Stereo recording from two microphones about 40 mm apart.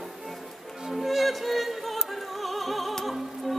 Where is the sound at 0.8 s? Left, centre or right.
Centre.